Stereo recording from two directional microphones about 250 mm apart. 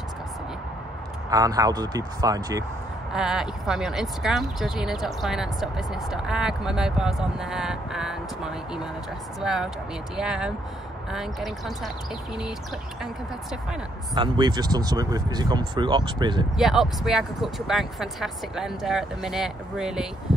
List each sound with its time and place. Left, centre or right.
1.3 s speech: centre
3.1 s speech: centre
13.0 s speech: centre
14.1 s speech: centre
16.5 s speech: centre